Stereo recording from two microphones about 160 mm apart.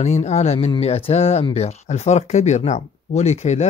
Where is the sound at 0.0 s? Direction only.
45° left (ahead or behind).